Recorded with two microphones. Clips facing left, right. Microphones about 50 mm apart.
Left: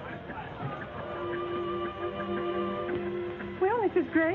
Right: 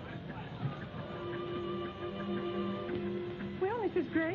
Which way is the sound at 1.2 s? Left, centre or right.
Left.